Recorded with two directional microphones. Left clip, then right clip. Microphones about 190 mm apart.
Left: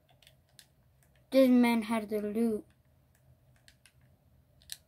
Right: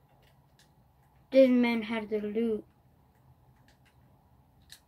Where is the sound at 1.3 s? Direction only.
50° left (ahead or behind).